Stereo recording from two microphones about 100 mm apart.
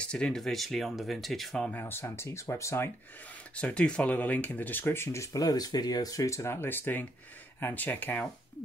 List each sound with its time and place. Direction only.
0.0 s speech: 10° left (ahead or behind)
1.7 s speech: 20° left (ahead or behind)
3.5 s speech: 10° left (ahead or behind)